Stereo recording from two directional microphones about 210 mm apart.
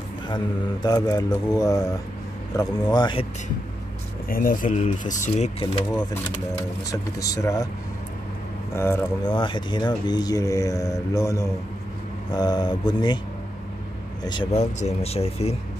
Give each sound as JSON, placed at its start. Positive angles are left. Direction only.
{"t": 0.8, "sound": "speech", "side_deg": 20}
{"t": 4.3, "sound": "speech", "side_deg": 40}
{"t": 6.9, "sound": "speech", "side_deg": 15}
{"t": 8.7, "sound": "speech", "side_deg": 15}
{"t": 14.2, "sound": "speech", "side_deg": 20}